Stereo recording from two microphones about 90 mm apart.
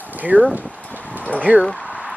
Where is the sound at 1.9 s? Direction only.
15° right (ahead or behind).